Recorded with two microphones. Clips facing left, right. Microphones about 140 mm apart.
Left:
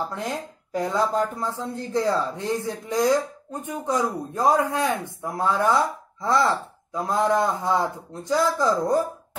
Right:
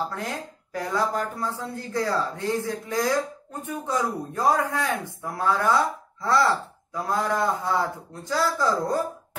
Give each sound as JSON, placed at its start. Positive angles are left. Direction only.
{"t": 0.7, "sound": "speech", "side_deg": 20}